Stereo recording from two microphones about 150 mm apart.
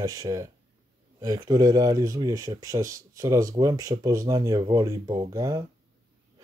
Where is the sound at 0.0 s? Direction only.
20° right (ahead or behind).